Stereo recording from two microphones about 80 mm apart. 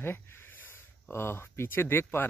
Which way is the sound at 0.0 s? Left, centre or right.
Left.